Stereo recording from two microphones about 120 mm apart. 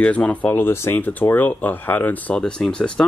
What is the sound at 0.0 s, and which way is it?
Speech, 10° left (ahead or behind).